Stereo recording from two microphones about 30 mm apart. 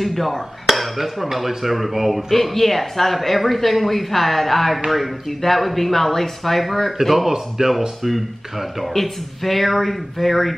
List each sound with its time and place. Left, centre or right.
0.0 s speech: centre
0.7 s dishes: centre
1.6 s speech: centre
8.8 s speech: centre